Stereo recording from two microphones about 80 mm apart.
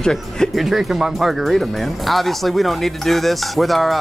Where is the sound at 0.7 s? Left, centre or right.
Centre.